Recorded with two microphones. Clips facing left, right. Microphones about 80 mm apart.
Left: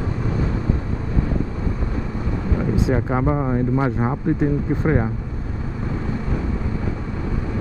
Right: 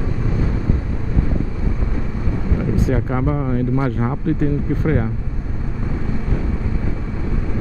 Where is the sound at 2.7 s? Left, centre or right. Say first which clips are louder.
Left 1 dB; centre.